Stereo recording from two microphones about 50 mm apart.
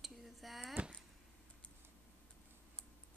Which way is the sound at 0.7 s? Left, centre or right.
Right.